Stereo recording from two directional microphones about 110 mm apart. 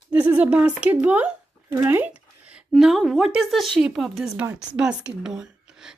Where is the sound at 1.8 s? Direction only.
20° right (ahead or behind).